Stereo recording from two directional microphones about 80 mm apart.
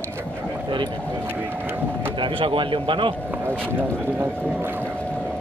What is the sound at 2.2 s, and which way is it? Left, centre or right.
Speech, right.